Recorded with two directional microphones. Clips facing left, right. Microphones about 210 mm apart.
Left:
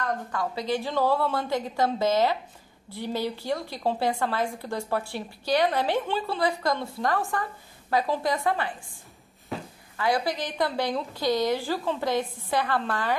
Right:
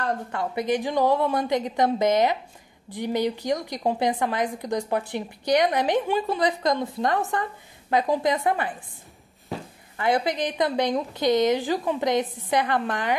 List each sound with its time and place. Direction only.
0.0 s a woman's voice: 25° right (ahead or behind)
9.9 s a woman's voice: 20° right (ahead or behind)